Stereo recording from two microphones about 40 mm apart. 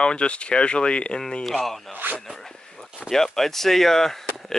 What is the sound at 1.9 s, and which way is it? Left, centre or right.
Speech, right.